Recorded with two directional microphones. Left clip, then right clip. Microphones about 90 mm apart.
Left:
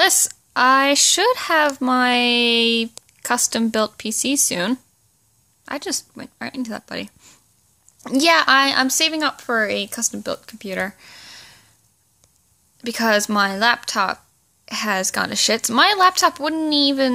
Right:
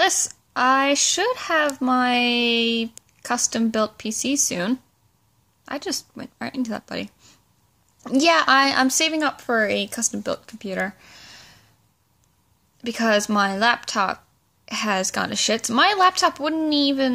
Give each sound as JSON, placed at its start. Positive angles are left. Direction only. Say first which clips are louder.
{"t": 0.0, "sound": "a woman's voice", "louder": "left 3 dB", "side_deg": 15}
{"t": 8.0, "sound": "a woman's voice", "louder": "left 2 dB", "side_deg": 10}
{"t": 10.5, "sound": "a sound", "louder": "left 1 dB", "side_deg": 10}
{"t": 12.7, "sound": "a woman's voice", "louder": "left 2 dB", "side_deg": 10}